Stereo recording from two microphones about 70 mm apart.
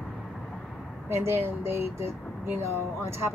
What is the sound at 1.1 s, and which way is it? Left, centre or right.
Speech, right.